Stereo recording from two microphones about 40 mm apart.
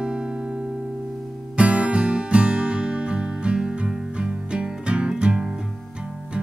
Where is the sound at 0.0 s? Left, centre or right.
Right.